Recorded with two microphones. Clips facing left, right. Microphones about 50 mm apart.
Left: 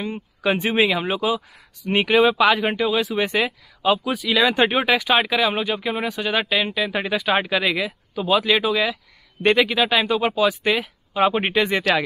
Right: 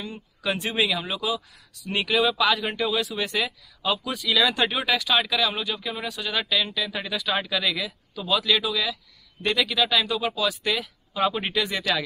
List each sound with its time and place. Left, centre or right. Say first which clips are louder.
0.0 s speech: left 7 dB; left